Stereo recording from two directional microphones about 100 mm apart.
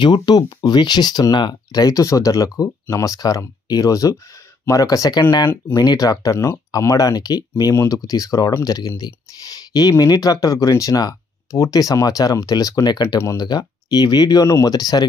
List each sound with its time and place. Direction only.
0.0 s speech: 50° left (ahead or behind)
13.2 s speech: 30° left (ahead or behind)
13.5 s speech: 45° left (ahead or behind)